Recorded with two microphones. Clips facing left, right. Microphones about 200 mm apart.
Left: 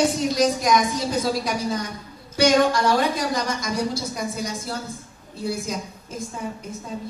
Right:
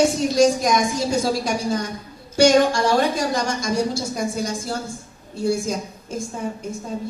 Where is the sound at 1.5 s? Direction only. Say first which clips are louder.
Right 3 dB; 45° right (ahead or behind).